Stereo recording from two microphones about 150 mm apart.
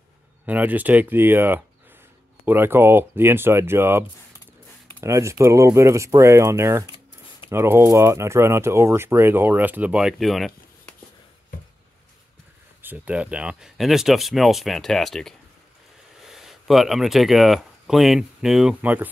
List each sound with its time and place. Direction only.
0.5 s speech: 10° right (ahead or behind)
5.0 s speech: 20° right (ahead or behind); by 11.0 s centre (ahead or behind)
12.8 s speech: 10° right (ahead or behind)